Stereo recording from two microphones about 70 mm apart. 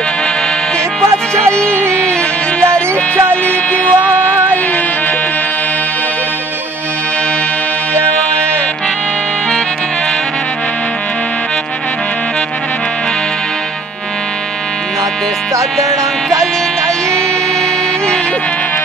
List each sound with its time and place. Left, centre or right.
2.6 s music: right
3.4 s vehicle: left